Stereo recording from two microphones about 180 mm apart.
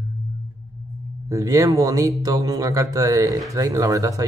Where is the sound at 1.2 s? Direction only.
20° right (ahead or behind).